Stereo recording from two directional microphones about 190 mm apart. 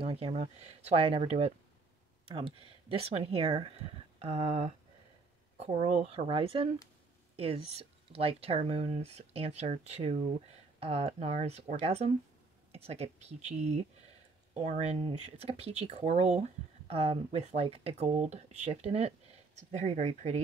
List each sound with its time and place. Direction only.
0.0 s speech: 30° right (ahead or behind)